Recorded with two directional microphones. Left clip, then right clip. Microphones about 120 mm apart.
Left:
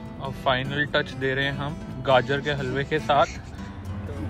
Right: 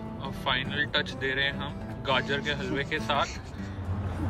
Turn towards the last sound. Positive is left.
turn(degrees=5)  # may be behind; listen again after turning